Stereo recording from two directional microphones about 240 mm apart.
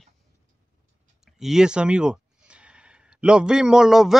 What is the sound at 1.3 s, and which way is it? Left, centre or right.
Speech, centre.